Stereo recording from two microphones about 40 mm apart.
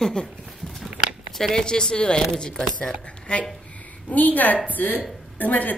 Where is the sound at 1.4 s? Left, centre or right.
Centre.